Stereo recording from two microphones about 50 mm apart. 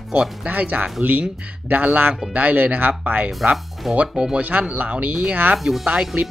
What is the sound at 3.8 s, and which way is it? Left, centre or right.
Speech, centre.